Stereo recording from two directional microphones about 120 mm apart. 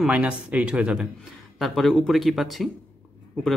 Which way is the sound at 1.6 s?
Centre (ahead or behind).